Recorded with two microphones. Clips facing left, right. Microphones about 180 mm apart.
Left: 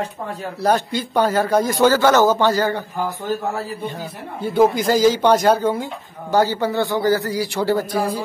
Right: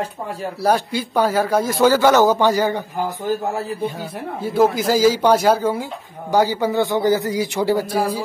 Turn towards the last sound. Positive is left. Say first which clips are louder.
# right 1 dB
turn(degrees=-10)  # may be behind; listen again after turning